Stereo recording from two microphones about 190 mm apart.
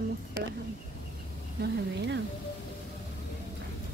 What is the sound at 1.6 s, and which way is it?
Speech, 65° right (ahead or behind).